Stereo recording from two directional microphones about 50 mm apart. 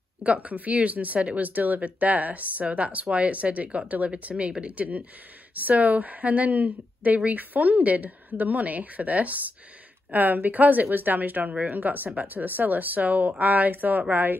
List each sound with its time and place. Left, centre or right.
0.2 s speech: right
5.5 s speech: right